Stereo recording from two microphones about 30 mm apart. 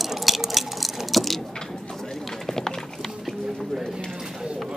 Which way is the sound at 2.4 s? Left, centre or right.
Centre.